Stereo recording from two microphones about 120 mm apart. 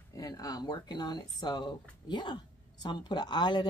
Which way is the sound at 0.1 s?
30° left (ahead or behind).